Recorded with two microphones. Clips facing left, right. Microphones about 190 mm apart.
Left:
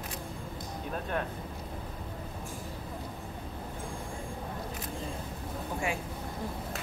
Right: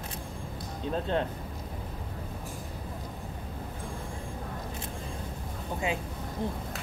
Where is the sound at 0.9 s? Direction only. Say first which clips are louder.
Right 5 dB; 25° right (ahead or behind).